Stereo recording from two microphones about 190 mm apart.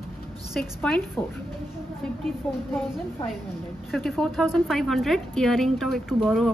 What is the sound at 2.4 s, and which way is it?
Speech, 5° left (ahead or behind).